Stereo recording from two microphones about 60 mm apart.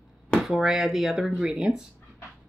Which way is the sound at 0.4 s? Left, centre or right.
Centre.